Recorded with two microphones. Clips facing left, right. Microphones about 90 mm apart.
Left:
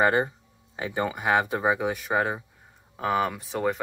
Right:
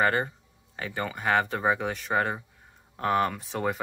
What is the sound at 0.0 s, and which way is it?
Speech, 15° left (ahead or behind).